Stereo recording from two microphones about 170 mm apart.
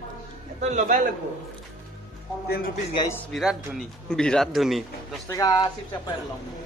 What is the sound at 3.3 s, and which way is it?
A man's voice, centre (ahead or behind).